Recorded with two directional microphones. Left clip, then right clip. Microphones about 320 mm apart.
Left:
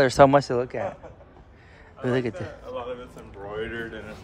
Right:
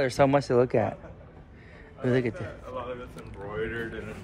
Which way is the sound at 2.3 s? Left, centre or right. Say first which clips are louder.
Left 3 dB; left.